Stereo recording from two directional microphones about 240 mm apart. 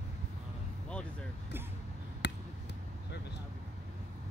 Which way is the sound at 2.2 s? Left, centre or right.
Left.